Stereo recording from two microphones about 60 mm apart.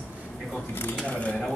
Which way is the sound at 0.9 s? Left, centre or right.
Centre.